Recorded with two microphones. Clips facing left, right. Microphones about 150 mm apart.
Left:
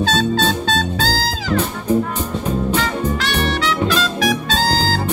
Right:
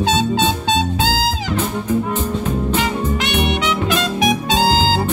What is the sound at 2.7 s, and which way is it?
Music, 20° right (ahead or behind).